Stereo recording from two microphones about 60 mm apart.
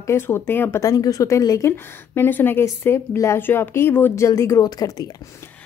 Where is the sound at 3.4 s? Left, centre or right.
Left.